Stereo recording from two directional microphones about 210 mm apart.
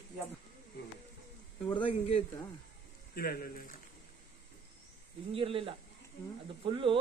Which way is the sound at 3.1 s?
45° left (ahead or behind).